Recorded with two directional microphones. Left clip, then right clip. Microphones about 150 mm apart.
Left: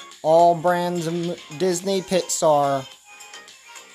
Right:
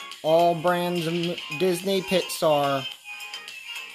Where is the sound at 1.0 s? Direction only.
20° left (ahead or behind).